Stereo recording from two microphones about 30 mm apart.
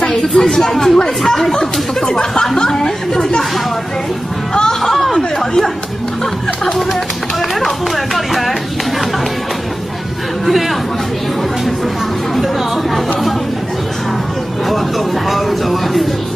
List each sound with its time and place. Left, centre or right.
0.1 s speech: centre
7.6 s music: centre
15.2 s speech: centre